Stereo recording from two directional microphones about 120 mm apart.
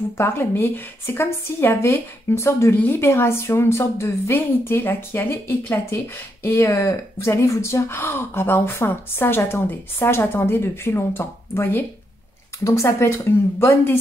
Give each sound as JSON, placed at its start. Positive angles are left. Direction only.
{"t": 0.2, "sound": "a woman's voice", "side_deg": 20}